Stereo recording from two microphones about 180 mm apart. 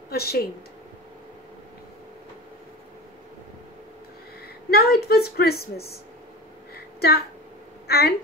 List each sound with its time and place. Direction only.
0.1 s a woman's voice: 60° left (ahead or behind)
4.6 s a woman's voice: 60° left (ahead or behind)
6.7 s a sound: 60° left (ahead or behind)